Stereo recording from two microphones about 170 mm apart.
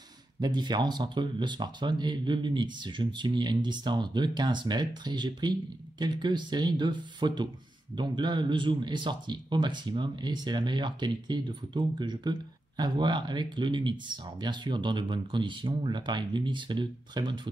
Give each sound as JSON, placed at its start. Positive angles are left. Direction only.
{"t": 0.4, "sound": "speech", "side_deg": -25}